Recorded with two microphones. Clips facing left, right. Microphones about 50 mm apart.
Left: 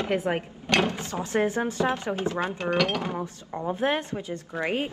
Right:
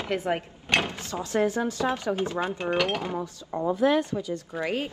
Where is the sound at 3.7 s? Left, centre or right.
Left.